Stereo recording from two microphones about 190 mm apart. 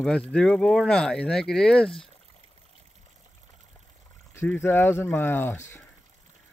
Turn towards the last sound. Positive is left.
turn(degrees=15)  # may be behind; listen again after turning